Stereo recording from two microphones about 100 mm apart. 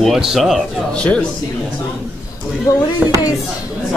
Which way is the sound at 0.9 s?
10° left (ahead or behind).